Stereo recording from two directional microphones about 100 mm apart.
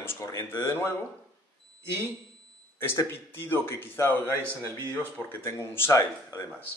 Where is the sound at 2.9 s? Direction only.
25° left (ahead or behind).